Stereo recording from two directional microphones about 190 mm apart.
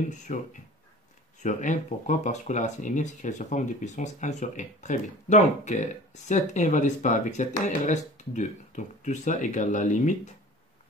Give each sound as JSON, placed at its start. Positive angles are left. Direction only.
{"t": 0.1, "sound": "speech", "side_deg": 40}